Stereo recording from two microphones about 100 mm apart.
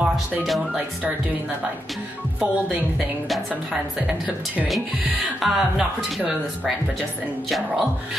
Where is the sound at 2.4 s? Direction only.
10° right (ahead or behind).